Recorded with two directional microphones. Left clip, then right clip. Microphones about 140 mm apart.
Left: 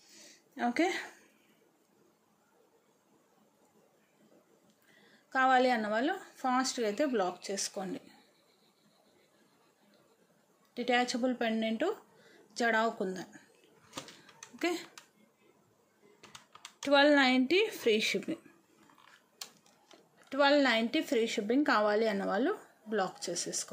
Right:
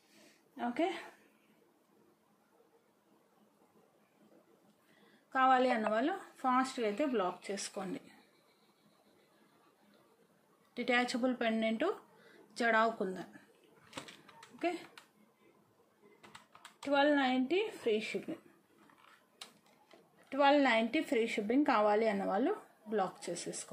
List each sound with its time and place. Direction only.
0.6 s speech: 60° left (ahead or behind)
5.3 s speech: 30° left (ahead or behind)
10.7 s speech: 25° left (ahead or behind)
16.8 s speech: 65° left (ahead or behind)
20.2 s speech: 30° left (ahead or behind)